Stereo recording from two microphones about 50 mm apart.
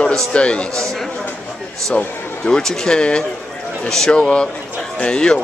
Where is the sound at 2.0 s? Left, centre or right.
Left.